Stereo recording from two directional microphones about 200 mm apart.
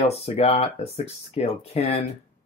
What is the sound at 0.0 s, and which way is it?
Speech, 30° left (ahead or behind).